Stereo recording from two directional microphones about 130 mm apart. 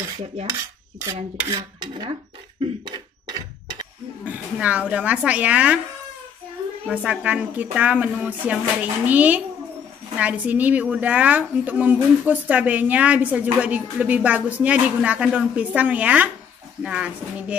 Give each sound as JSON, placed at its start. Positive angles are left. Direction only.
{"t": 1.5, "sound": "dishes", "side_deg": -30}
{"t": 2.6, "sound": "beatboxing", "side_deg": -35}
{"t": 4.2, "sound": "a woman's voice", "side_deg": -10}
{"t": 6.9, "sound": "a woman's voice", "side_deg": -10}